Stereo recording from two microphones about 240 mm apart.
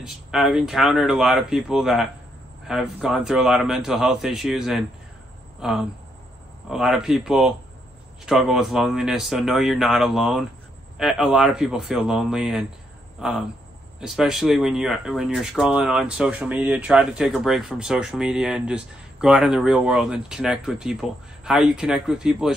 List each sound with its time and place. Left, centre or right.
0.0 s speech: centre